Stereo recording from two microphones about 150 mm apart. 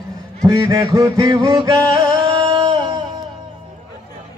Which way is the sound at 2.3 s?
30° right (ahead or behind).